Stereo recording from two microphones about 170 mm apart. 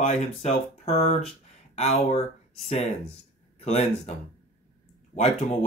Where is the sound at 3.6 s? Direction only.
40° left (ahead or behind).